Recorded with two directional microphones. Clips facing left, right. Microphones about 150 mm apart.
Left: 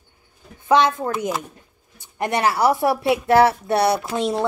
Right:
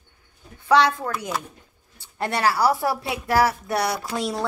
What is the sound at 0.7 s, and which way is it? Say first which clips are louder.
Speech: left 1 dB; 20° left (ahead or behind).